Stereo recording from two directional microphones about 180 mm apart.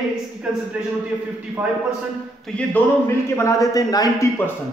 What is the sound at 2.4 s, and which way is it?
A man's voice, 10° left (ahead or behind).